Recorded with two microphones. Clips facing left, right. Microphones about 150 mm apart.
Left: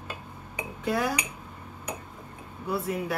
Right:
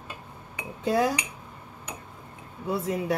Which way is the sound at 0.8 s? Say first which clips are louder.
Right 4 dB; 30° right (ahead or behind).